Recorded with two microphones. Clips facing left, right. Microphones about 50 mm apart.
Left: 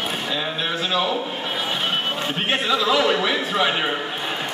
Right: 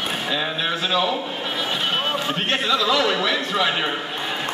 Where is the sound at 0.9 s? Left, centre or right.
Centre.